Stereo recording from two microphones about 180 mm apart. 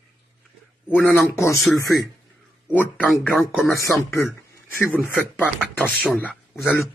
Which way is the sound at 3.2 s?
15° left (ahead or behind).